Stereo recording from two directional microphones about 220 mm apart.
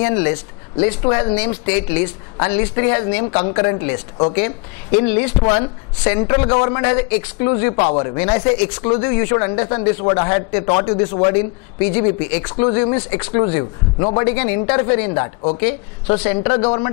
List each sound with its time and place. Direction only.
0.0 s a woman's voice: 20° left (ahead or behind)
3.3 s speech: 25° left (ahead or behind)
5.0 s a woman's voice: 10° left (ahead or behind)
7.6 s speech: 25° left (ahead or behind)
11.8 s a woman's voice: 55° left (ahead or behind)
12.5 s speech: 20° left (ahead or behind)
15.5 s speech: 15° left (ahead or behind)